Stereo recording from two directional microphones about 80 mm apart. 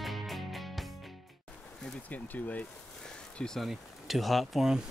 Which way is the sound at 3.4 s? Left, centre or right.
Centre.